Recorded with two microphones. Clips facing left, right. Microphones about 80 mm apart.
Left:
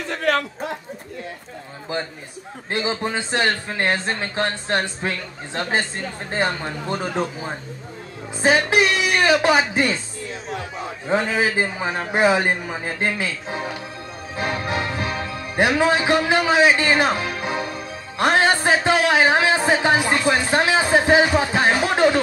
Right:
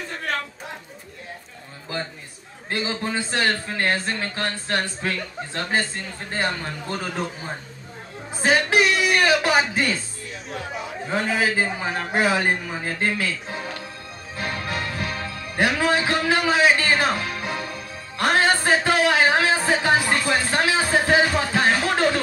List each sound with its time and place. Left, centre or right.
0.1 s a sound: left
1.9 s speech: left
8.4 s a woman's voice: centre
11.1 s speech: left
14.3 s music: left